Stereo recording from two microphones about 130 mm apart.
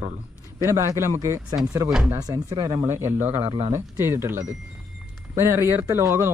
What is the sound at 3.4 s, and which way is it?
Speech, 45° right (ahead or behind).